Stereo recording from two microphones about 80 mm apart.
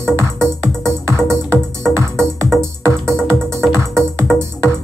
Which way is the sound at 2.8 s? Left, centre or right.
Right.